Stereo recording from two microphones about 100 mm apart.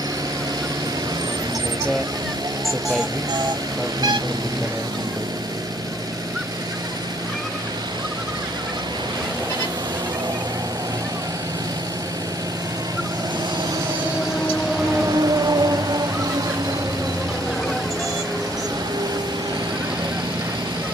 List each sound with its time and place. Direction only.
15.0 s whale vocalization: 35° right (ahead or behind)